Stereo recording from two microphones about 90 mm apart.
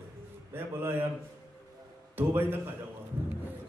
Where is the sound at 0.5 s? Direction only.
25° right (ahead or behind).